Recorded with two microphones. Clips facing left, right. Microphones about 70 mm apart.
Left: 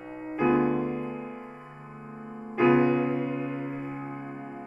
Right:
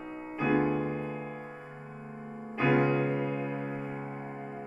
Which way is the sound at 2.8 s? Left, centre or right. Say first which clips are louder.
Left 3 dB; centre.